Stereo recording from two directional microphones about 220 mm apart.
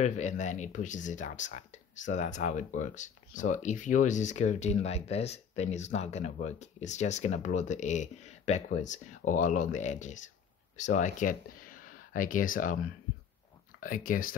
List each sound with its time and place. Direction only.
0.0 s speech: 30° left (ahead or behind)
13.7 s speech: 40° left (ahead or behind)